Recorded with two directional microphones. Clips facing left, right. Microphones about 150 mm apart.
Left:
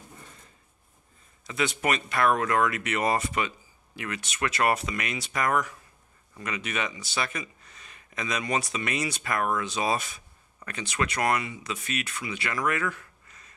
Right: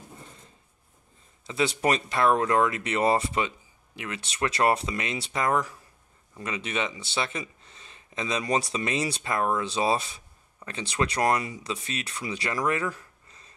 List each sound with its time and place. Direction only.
1.4 s speech: 30° right (ahead or behind)